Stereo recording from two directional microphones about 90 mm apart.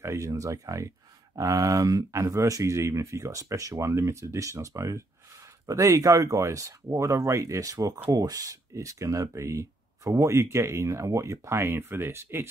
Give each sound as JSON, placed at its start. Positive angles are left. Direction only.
{"t": 0.0, "sound": "speech", "side_deg": -35}